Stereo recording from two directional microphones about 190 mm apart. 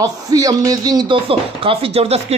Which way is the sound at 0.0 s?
20° right (ahead or behind).